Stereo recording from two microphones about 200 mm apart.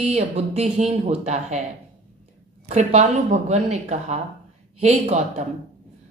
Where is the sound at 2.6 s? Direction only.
35° right (ahead or behind).